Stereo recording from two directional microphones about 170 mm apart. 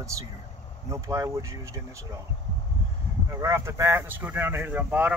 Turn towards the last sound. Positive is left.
turn(degrees=-10)  # may be behind; listen again after turning